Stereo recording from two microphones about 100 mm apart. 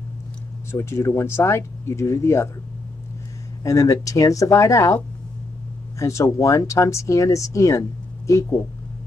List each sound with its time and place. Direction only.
0.7 s speech: 25° left (ahead or behind)
3.6 s speech: 35° left (ahead or behind)